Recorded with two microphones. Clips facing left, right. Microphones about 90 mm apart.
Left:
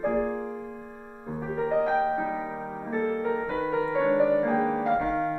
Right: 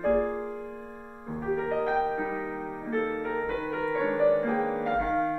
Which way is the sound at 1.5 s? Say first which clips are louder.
Left 2 dB; 10° left (ahead or behind).